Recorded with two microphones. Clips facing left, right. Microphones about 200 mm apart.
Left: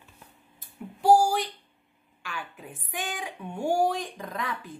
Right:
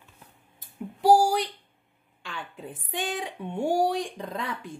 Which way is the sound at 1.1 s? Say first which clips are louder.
Even; 25° right (ahead or behind).